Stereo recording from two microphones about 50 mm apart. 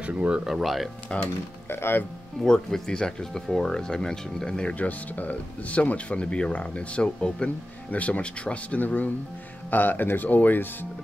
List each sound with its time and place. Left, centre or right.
0.0 s speech: right
0.5 s speech: centre
1.7 s speech: left
2.4 s speech: centre
4.7 s speech: left
7.9 s speech: left